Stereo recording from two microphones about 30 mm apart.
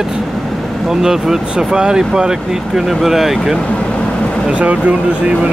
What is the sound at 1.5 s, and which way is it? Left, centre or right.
Speech, right.